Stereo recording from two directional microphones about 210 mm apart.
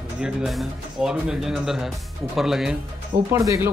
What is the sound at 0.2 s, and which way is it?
Speech, centre (ahead or behind).